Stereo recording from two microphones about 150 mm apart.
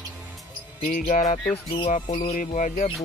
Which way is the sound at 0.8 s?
55° left (ahead or behind).